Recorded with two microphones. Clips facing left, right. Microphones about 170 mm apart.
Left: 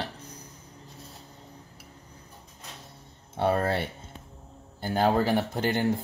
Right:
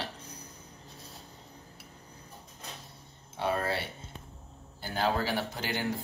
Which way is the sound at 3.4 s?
55° left (ahead or behind).